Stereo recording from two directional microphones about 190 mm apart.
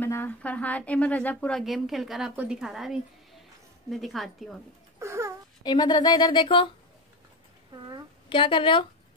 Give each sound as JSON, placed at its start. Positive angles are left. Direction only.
{"t": 0.0, "sound": "speech", "side_deg": 10}
{"t": 4.9, "sound": "a sound", "side_deg": -15}
{"t": 5.6, "sound": "speech", "side_deg": 20}
{"t": 8.3, "sound": "speech", "side_deg": 25}